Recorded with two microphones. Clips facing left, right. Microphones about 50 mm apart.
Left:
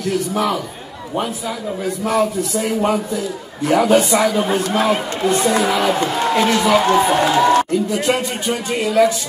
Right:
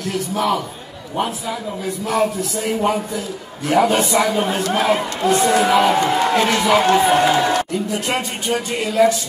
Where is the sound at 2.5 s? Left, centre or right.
Centre.